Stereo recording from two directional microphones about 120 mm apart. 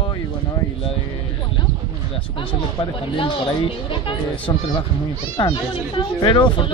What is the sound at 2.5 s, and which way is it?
Speech, 45° left (ahead or behind).